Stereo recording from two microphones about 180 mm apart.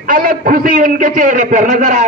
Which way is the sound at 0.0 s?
50° right (ahead or behind).